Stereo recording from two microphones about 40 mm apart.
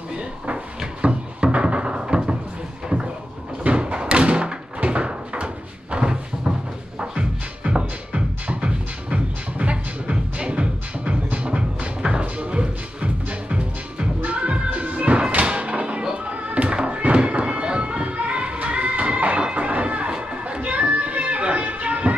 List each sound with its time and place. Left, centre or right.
1.0 s cupboard open or close: right
3.6 s thump: right
4.7 s cupboard open or close: right
7.0 s music: right